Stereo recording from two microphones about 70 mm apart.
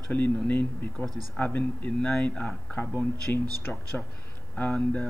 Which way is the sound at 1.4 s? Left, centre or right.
Left.